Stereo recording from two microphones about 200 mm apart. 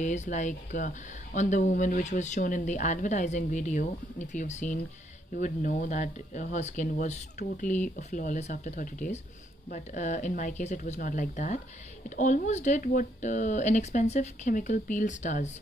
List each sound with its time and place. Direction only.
0.0 s speech: 35° left (ahead or behind)